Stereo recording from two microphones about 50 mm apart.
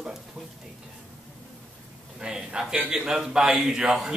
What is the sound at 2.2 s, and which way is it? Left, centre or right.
A man's voice, centre.